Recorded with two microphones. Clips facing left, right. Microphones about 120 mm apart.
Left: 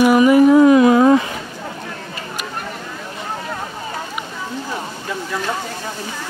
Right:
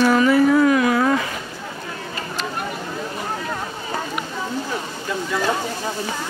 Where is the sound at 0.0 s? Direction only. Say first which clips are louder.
Left 4 dB; 15° left (ahead or behind).